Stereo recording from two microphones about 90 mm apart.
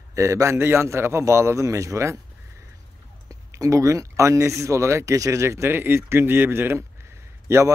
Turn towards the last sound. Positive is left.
turn(degrees=-30)  # may be behind; listen again after turning